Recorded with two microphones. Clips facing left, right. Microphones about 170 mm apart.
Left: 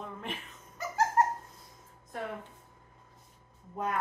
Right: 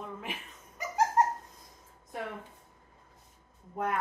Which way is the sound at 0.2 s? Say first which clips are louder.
Left 1 dB; 5° right (ahead or behind).